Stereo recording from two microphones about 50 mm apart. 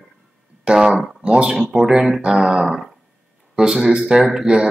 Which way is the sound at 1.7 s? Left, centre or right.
Centre.